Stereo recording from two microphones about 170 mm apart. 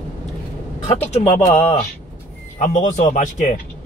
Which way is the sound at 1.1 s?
40° left (ahead or behind).